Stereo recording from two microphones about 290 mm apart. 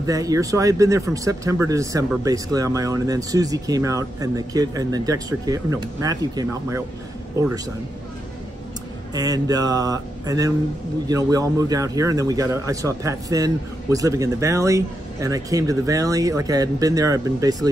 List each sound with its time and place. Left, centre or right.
0.0 s speech: centre
9.1 s speech: centre